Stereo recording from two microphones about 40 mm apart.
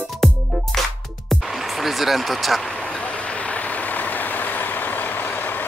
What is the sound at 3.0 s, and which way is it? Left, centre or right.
Vehicle, left.